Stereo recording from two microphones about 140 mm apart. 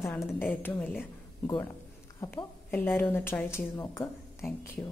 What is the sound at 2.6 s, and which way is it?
A woman's voice, 15° left (ahead or behind).